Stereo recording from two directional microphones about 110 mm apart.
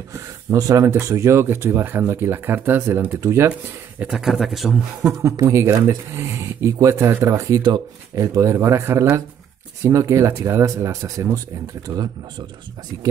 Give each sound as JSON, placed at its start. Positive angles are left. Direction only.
{"t": 0.5, "sound": "speech", "side_deg": -30}
{"t": 4.0, "sound": "a man's voice", "side_deg": -5}
{"t": 5.0, "sound": "speech", "side_deg": -25}